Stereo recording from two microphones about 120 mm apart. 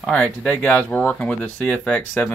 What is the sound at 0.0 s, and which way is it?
Speech, 10° left (ahead or behind).